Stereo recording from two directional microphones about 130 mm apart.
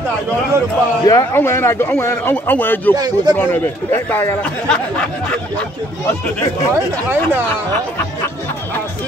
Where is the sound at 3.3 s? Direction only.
15° left (ahead or behind).